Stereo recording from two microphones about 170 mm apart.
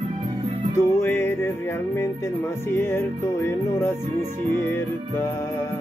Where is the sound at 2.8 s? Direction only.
15° left (ahead or behind).